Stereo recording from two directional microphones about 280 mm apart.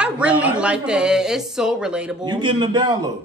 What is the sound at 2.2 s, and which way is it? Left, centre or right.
Speech, centre.